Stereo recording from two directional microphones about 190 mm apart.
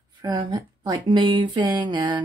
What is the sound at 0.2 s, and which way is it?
Speech, 20° right (ahead or behind).